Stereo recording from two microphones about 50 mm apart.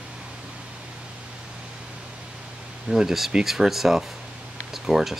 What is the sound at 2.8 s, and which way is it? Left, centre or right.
Speech, centre.